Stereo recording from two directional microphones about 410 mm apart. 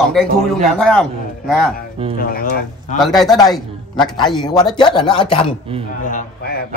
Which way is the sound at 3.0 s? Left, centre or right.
Centre.